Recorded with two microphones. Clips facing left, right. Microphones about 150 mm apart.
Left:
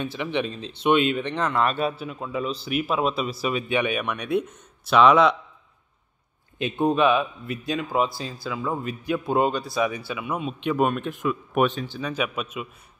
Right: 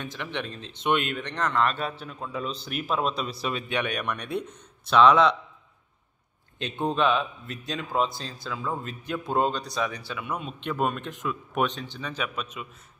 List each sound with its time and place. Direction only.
0.0 s a man's voice: 15° left (ahead or behind)
7.0 s a man's voice: 5° left (ahead or behind)